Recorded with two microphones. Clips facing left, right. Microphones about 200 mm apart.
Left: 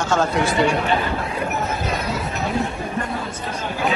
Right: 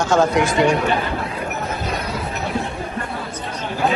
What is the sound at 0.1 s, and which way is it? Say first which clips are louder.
Speech: right 3 dB; 15° right (ahead or behind).